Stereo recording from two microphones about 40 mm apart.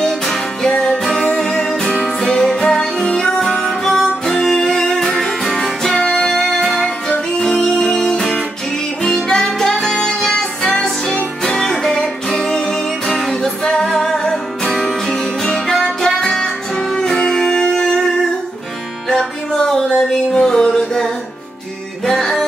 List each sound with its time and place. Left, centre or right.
0.6 s music: centre